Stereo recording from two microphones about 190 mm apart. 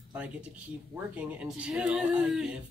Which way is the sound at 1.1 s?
5° right (ahead or behind).